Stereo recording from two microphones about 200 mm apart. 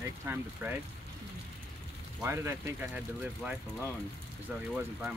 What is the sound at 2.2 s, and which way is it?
Speech, 15° right (ahead or behind).